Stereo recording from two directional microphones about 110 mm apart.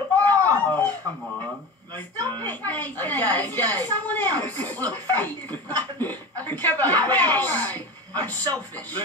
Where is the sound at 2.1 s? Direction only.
40° right (ahead or behind).